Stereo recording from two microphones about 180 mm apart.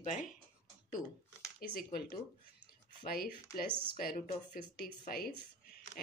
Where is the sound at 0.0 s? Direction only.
45° left (ahead or behind).